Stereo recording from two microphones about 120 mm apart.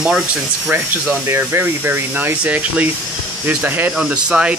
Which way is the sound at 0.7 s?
20° right (ahead or behind).